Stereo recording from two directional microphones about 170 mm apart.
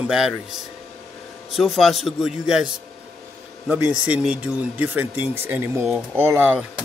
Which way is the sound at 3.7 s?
10° right (ahead or behind).